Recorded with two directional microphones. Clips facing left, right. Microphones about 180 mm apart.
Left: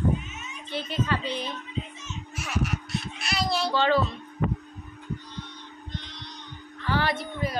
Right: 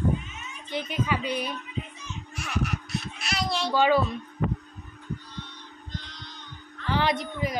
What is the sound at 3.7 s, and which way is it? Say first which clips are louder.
Child singing: right 3 dB; 10° right (ahead or behind).